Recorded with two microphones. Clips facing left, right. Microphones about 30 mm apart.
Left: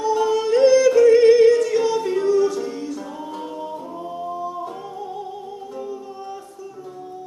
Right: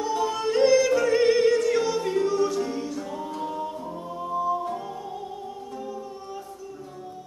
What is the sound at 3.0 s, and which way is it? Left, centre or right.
Music, centre.